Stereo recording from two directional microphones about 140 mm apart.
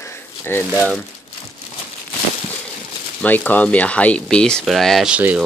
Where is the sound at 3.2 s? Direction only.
10° left (ahead or behind).